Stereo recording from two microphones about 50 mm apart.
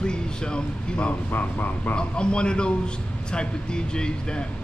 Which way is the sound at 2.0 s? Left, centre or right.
Centre.